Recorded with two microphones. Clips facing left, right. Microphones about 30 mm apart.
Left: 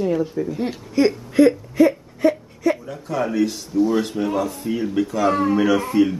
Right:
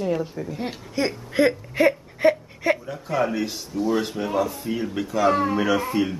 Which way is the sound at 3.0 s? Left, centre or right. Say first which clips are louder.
Left 3 dB; centre.